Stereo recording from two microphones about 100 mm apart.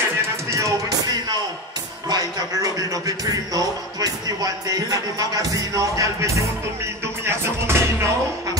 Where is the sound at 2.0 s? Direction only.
40° right (ahead or behind).